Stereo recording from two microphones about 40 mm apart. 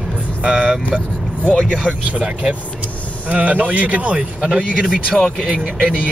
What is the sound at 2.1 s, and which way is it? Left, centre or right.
Speech, right.